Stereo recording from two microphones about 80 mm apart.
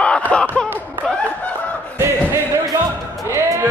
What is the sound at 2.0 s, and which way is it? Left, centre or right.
Music, right.